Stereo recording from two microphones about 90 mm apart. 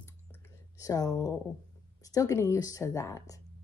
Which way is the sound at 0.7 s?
40° left (ahead or behind).